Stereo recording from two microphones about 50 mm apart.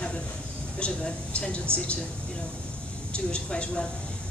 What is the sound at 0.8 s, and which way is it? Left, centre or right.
Speech, left.